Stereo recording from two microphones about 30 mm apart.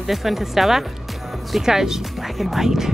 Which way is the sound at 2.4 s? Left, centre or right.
Centre.